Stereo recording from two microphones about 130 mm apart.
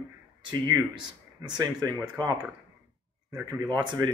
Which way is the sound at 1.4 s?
30° right (ahead or behind).